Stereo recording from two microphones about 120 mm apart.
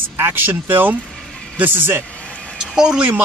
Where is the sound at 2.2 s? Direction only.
10° left (ahead or behind).